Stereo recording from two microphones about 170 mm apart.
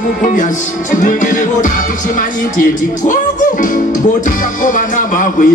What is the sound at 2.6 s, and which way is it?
Speech, 50° left (ahead or behind).